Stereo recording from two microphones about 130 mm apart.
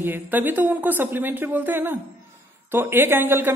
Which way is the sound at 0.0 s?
15° right (ahead or behind).